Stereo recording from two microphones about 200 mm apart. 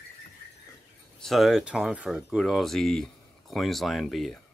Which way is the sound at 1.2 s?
Centre (ahead or behind).